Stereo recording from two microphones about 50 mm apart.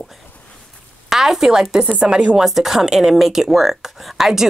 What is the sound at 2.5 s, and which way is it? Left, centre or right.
Speech, centre.